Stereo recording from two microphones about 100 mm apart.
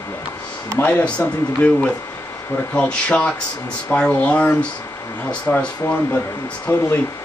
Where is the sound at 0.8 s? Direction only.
15° left (ahead or behind).